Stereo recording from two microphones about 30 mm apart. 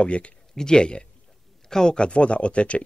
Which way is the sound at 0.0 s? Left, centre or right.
Left.